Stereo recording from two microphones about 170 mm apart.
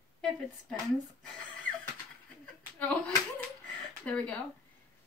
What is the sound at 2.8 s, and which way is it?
Clapping, 10° left (ahead or behind).